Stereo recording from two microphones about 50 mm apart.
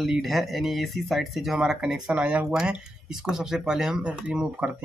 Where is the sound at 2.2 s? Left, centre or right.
Right.